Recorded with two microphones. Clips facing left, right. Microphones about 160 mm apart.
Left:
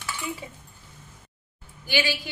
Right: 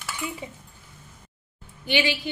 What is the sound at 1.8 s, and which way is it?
Speech, 20° right (ahead or behind).